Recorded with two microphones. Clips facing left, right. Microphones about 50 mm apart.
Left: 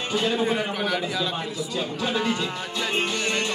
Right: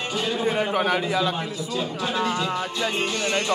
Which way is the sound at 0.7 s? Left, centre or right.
Right.